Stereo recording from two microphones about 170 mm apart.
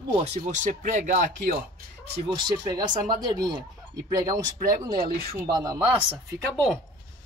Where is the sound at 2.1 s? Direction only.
25° right (ahead or behind).